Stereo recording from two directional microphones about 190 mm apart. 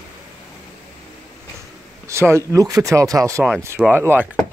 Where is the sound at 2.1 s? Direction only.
15° right (ahead or behind).